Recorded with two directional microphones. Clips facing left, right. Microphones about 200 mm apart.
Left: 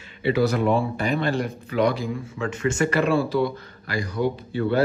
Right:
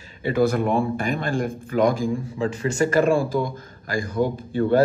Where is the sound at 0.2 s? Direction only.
50° right (ahead or behind).